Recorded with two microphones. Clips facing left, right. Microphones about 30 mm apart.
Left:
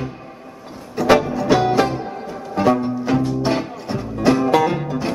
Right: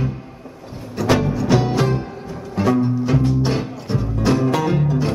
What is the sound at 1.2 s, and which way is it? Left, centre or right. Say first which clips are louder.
Music: left 1 dB; centre.